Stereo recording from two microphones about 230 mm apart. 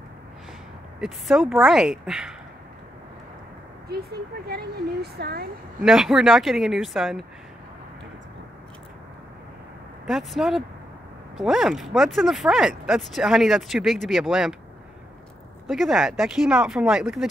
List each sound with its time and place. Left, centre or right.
1.0 s speech: centre
5.0 s speech: right
5.8 s speech: centre
10.0 s speech: centre
15.6 s speech: centre